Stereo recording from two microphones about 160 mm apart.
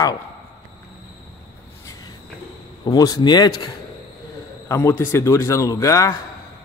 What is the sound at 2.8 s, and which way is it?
Speech, 25° left (ahead or behind).